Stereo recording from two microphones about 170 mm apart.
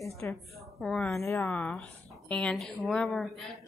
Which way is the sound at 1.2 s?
15° left (ahead or behind).